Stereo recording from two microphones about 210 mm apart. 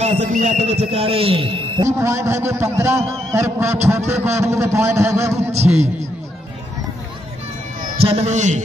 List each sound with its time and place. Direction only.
0.0 s a man's voice: 30° right (ahead or behind)
2.0 s a man's voice: 15° right (ahead or behind)
5.5 s a man's voice: 30° right (ahead or behind)
8.0 s a man's voice: 30° right (ahead or behind)